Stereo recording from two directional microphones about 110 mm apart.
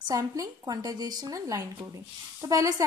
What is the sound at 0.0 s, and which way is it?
A woman's voice, 35° right (ahead or behind).